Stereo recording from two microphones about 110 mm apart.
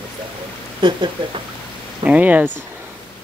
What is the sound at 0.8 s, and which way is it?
Speech, 45° right (ahead or behind).